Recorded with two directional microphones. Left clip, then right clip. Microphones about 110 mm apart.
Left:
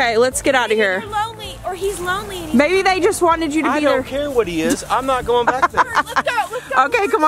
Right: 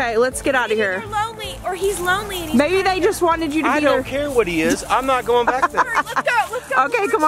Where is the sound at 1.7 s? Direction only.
Centre (ahead or behind).